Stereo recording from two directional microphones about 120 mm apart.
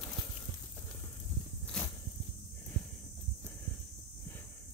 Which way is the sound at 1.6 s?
10° left (ahead or behind).